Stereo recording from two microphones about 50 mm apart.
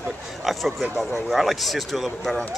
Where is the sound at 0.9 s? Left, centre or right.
Centre.